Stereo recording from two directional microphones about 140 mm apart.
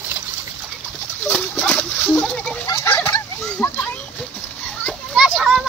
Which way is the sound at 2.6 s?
15° left (ahead or behind).